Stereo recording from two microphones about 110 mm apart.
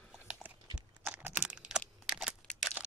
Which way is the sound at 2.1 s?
5° right (ahead or behind).